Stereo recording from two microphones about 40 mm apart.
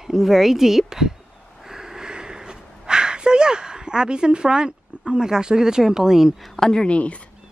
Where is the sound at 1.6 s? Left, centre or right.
Centre.